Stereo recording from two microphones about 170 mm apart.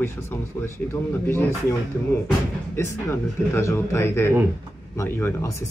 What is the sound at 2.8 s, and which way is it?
Speech, 15° left (ahead or behind).